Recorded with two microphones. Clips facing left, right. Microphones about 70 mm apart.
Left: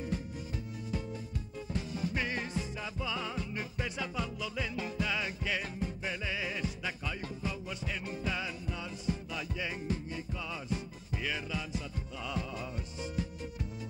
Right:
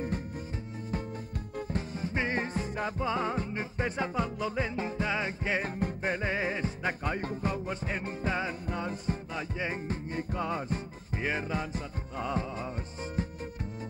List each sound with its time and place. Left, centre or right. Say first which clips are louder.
1.7 s music: even; right